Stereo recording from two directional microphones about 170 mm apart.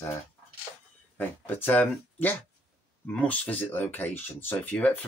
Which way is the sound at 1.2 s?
10° left (ahead or behind).